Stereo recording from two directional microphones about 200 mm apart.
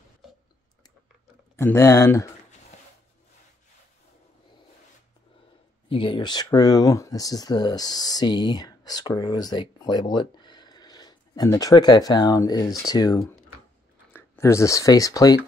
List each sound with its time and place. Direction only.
1.6 s speech: 15° left (ahead or behind)
5.9 s speech: 25° left (ahead or behind)